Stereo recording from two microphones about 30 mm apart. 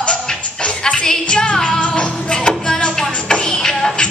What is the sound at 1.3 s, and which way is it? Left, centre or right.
Music, left.